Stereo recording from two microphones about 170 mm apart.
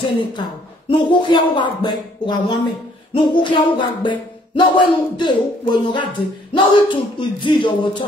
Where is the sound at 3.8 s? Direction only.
30° left (ahead or behind).